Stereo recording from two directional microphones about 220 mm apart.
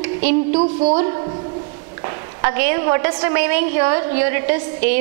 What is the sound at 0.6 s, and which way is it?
Speech, 30° right (ahead or behind).